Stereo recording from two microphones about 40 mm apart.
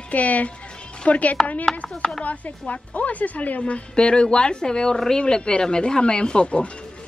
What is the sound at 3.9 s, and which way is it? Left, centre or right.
A woman's voice, left.